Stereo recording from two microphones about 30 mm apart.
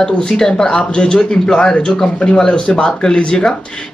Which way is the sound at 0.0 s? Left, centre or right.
Left.